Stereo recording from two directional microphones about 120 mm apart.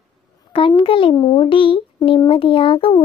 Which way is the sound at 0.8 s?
50° left (ahead or behind).